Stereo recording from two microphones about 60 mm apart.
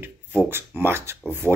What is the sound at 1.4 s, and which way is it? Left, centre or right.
Speech, left.